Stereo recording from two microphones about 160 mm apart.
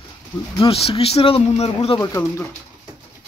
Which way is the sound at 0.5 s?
40° left (ahead or behind).